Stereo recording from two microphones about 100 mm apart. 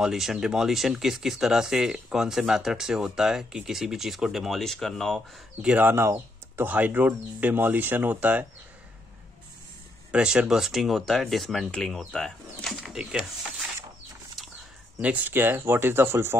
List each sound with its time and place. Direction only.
0.0 s speech: 5° right (ahead or behind)
5.6 s speech: 15° right (ahead or behind)
10.1 s speech: 10° right (ahead or behind)
14.4 s a sound: centre (ahead or behind)
15.0 s speech: 15° right (ahead or behind)